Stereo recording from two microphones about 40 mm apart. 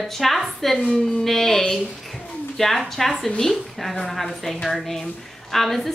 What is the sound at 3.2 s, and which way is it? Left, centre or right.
A woman's voice, centre.